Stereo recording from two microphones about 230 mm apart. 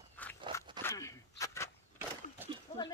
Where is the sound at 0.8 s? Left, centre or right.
Centre.